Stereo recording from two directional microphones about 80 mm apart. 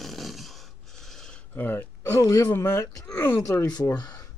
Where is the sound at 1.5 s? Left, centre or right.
Left.